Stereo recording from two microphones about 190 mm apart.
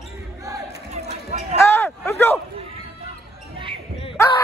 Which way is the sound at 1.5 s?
15° left (ahead or behind).